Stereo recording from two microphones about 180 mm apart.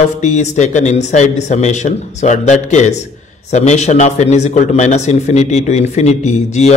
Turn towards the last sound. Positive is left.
turn(degrees=40)  # may be behind; listen again after turning